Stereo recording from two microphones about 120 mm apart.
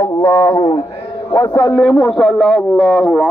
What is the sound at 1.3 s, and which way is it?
Speech, 25° left (ahead or behind).